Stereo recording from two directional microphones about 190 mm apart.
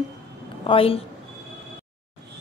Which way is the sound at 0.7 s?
30° left (ahead or behind).